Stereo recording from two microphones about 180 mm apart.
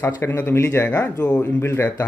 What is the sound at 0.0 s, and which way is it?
Speech, 15° left (ahead or behind).